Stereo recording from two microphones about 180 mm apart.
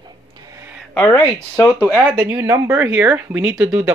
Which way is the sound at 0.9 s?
10° left (ahead or behind).